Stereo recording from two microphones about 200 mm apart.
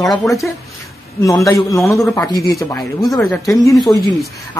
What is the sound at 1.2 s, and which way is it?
Speech, 15° left (ahead or behind).